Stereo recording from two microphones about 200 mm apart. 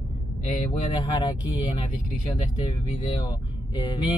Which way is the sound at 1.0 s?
20° left (ahead or behind).